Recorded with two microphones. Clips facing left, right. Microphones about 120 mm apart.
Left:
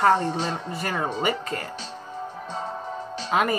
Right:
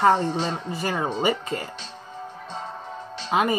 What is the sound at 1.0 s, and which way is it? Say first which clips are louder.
Speech: right 2 dB; 30° right (ahead or behind).